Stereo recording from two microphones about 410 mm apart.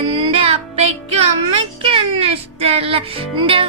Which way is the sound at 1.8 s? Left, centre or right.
Centre.